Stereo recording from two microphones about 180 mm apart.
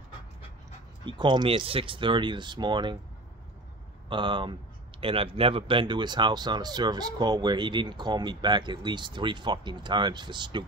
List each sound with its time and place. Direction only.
1.0 s speech: 25° right (ahead or behind)
4.1 s speech: 25° right (ahead or behind)